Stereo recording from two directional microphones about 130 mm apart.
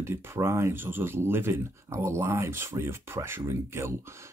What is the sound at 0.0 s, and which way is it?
Speech, 20° right (ahead or behind).